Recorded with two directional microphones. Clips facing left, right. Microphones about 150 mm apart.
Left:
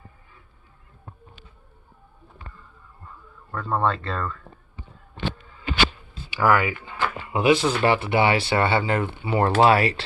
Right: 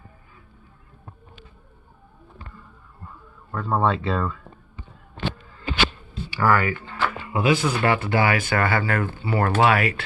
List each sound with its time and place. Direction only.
3.1 s speech: 5° right (ahead or behind)
6.3 s speech: 15° left (ahead or behind); by 10.0 s 30° left (ahead or behind)